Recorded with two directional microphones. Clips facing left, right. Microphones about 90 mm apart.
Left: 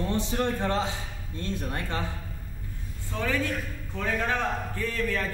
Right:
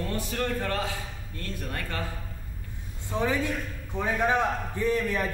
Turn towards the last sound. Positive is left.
turn(degrees=-15)  # may be behind; listen again after turning